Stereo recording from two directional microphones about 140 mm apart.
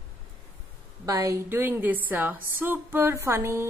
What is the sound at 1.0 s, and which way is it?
A woman's voice, 25° right (ahead or behind).